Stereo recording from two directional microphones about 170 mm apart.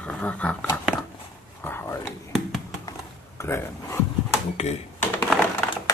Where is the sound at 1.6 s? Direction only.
15° left (ahead or behind).